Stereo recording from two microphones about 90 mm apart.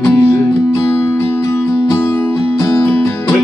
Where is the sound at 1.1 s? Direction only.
25° left (ahead or behind).